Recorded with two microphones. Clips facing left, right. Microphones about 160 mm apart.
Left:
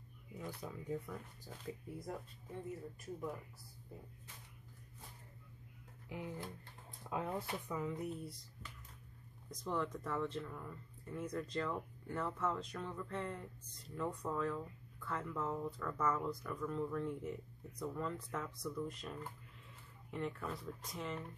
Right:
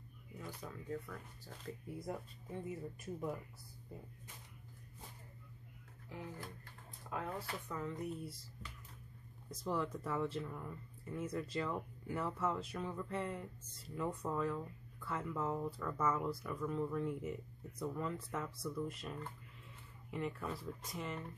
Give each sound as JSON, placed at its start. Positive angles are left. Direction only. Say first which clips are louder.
{"t": 0.5, "sound": "speech", "louder": "left 2 dB", "side_deg": 10}
{"t": 1.6, "sound": "speech", "louder": "even", "side_deg": 0}
{"t": 6.0, "sound": "speech", "louder": "left 3 dB", "side_deg": 20}
{"t": 7.7, "sound": "speech", "louder": "left 1 dB", "side_deg": 5}
{"t": 9.5, "sound": "speech", "louder": "right 1 dB", "side_deg": -5}